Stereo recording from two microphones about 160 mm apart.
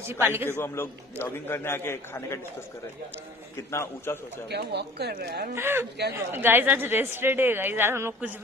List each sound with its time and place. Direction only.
0.0 s speech: 15° right (ahead or behind)
0.5 s a man's voice: 15° left (ahead or behind)
3.7 s a man's voice: 15° left (ahead or behind)
4.5 s speech: 90° right
5.5 s speech: 15° right (ahead or behind)